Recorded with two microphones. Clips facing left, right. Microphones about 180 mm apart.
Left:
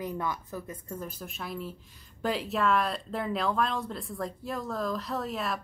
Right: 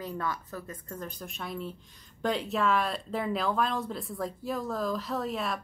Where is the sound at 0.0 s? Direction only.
15° left (ahead or behind).